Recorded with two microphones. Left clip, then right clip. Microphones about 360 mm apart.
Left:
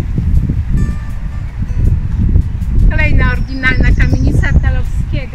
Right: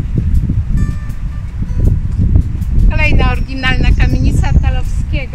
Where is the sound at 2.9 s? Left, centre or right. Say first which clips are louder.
Right 1 dB; centre.